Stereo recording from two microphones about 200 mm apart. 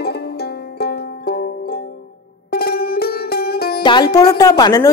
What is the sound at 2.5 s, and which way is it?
Music, 50° left (ahead or behind).